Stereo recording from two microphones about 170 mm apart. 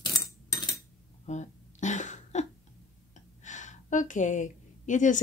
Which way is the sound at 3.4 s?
45° left (ahead or behind).